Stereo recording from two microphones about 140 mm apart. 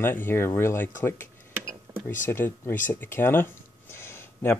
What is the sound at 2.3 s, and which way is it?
Speech, 15° left (ahead or behind).